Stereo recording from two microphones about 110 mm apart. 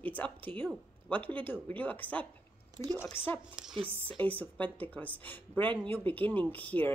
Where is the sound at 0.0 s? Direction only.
15° left (ahead or behind).